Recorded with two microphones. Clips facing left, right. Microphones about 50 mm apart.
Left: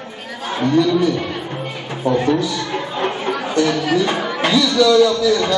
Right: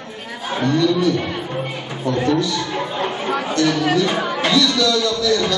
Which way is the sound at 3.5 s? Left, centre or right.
Centre.